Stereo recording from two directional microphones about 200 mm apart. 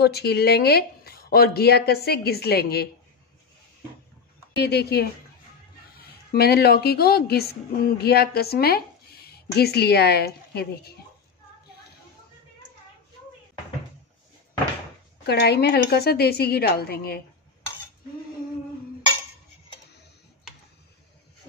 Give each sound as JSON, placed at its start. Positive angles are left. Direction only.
{"t": 0.0, "sound": "speech", "side_deg": 55}
{"t": 4.6, "sound": "speech", "side_deg": 55}
{"t": 6.3, "sound": "a woman's voice", "side_deg": 50}
{"t": 15.2, "sound": "speech", "side_deg": 55}